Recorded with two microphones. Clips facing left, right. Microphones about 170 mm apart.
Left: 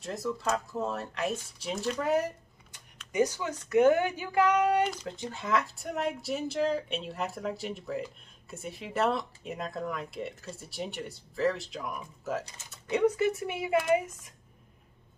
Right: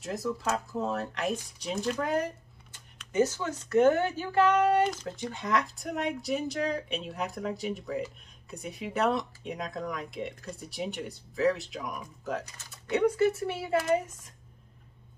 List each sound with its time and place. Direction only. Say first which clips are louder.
0.0 s speech: right 1 dB; centre (ahead or behind)
4.8 s speech: right 2 dB; centre (ahead or behind)